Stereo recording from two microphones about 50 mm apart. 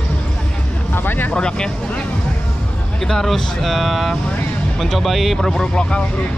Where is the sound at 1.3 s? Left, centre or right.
Centre.